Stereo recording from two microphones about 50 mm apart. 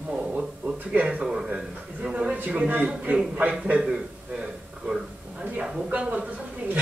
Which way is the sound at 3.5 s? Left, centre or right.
Centre.